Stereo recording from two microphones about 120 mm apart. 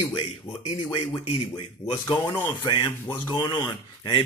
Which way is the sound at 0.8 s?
40° left (ahead or behind).